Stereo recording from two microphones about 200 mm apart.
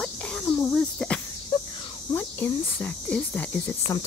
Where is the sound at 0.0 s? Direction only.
5° left (ahead or behind).